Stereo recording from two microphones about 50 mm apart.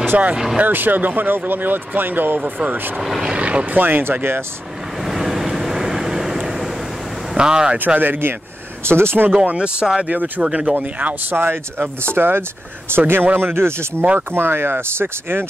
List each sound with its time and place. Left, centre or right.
0.1 s speech: right
0.6 s speech: right
3.0 s speech: centre
3.3 s speech: right
3.8 s speech: right
5.0 s vehicle: centre
7.3 s speech: centre
7.7 s speech: right
8.8 s speech: right
9.5 s speech: right
10.0 s speech: right
10.4 s speech: centre
11.3 s speech: right